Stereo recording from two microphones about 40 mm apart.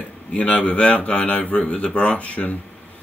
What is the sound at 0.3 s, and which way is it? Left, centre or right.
Speech, left.